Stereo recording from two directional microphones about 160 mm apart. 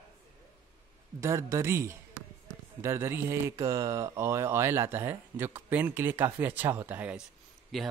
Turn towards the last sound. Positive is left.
turn(degrees=0)  # may be behind; listen again after turning